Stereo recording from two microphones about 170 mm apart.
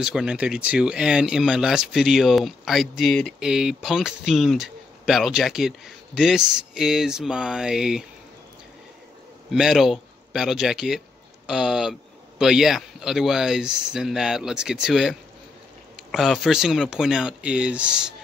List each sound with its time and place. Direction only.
0.0 s speech: 5° right (ahead or behind)
9.5 s speech: centre (ahead or behind)